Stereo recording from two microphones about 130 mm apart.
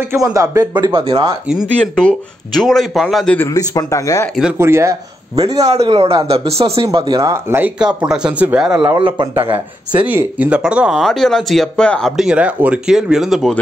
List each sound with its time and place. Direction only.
0.2 s speech: 25° right (ahead or behind)
1.8 s speech: 5° left (ahead or behind)
3.5 s speech: 25° left (ahead or behind)
4.6 s speech: 20° right (ahead or behind)
5.9 s speech: 45° right (ahead or behind); by 8.8 s 5° right (ahead or behind)
8.9 s speech: 40° right (ahead or behind)
9.5 s speech: 15° right (ahead or behind)
10.9 s speech: centre (ahead or behind)
12.2 s speech: 10° right (ahead or behind)